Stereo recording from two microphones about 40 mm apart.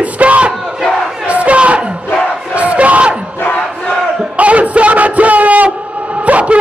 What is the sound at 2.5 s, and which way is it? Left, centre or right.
Crowd, right.